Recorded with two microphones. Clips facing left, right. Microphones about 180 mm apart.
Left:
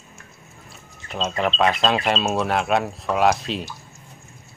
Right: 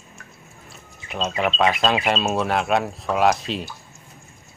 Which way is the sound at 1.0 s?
Centre (ahead or behind).